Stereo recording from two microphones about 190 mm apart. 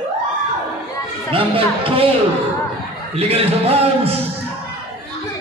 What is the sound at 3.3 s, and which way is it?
Music, 30° right (ahead or behind).